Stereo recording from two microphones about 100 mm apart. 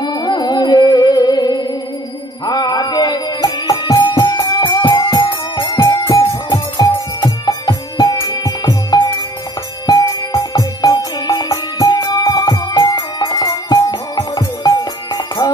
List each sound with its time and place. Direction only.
0.0 s music: 45° left (ahead or behind)
4.1 s music: 35° left (ahead or behind)